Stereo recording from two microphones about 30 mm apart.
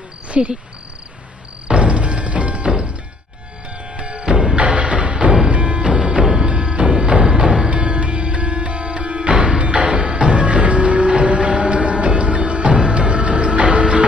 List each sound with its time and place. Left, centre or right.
0.3 s cricket: right
1.7 s music: right
3.9 s music: right
4.6 s music: right